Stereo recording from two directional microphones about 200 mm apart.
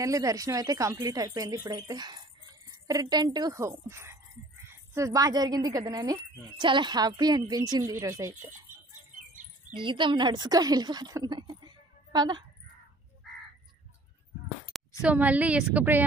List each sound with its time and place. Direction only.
0.0 s a woman's voice: 15° right (ahead or behind)
8.4 s speech: 40° right (ahead or behind)
9.8 s a woman's voice: 25° right (ahead or behind)
15.0 s speech: 5° right (ahead or behind)